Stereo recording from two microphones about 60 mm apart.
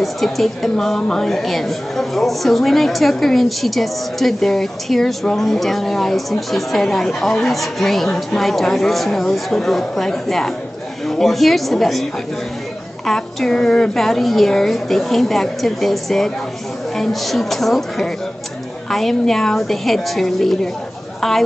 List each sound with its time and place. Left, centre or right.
0.0 s a woman's voice: centre